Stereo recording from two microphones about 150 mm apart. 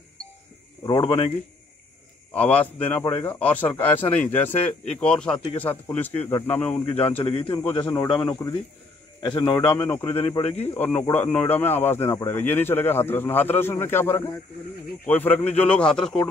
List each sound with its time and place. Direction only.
0.8 s speech: 30° left (ahead or behind)
2.3 s a man's voice: 10° left (ahead or behind)
7.2 s speech: 35° left (ahead or behind)
7.5 s a man's voice: 20° left (ahead or behind)
10.0 s speech: 40° left (ahead or behind)
10.7 s a man's voice: 15° left (ahead or behind)